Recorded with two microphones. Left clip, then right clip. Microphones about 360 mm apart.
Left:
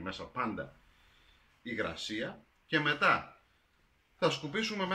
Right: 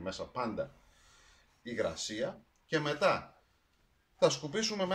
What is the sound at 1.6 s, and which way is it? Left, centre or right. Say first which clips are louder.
Speech: right 1 dB; centre.